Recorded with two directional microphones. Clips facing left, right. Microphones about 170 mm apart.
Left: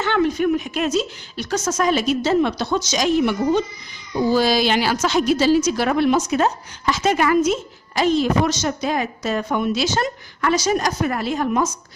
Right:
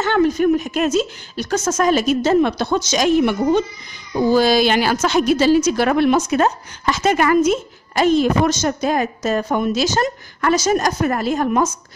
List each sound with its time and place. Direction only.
0.0 s a woman's voice: 40° right (ahead or behind)